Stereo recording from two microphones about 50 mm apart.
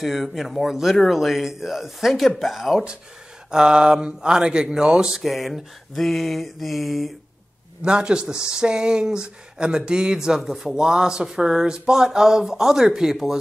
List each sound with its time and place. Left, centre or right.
0.0 s mantra: centre
3.5 s speech: centre
5.1 s mantra: centre
7.8 s speech: centre